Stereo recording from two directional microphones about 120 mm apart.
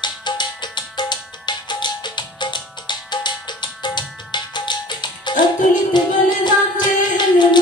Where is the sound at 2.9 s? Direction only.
40° left (ahead or behind).